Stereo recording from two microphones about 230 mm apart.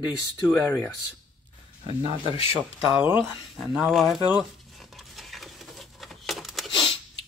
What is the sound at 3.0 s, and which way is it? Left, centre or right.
Speech, centre.